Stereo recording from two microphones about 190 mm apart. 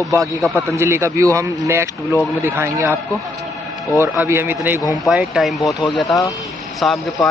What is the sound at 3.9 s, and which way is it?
Speech, 10° right (ahead or behind).